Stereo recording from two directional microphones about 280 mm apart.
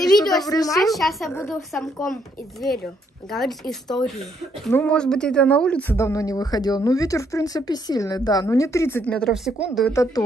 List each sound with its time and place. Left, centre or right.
0.2 s a woman's voice: centre
0.5 s speech: centre
0.7 s a woman's voice: centre